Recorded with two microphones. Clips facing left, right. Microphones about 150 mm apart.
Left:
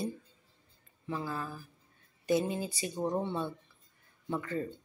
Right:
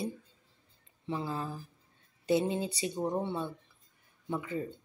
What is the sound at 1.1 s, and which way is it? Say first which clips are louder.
Speech: right 1 dB; 25° right (ahead or behind).